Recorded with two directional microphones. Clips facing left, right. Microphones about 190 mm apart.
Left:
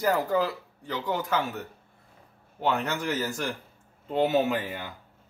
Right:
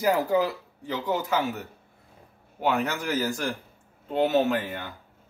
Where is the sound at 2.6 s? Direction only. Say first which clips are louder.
Right 1 dB; centre (ahead or behind).